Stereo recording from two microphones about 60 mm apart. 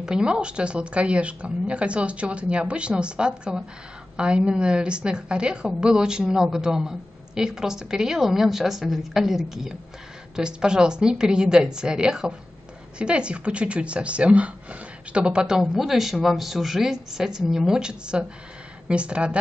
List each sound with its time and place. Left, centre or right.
0.0 s a woman's voice: centre